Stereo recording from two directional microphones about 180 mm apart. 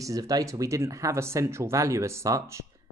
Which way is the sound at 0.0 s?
20° right (ahead or behind).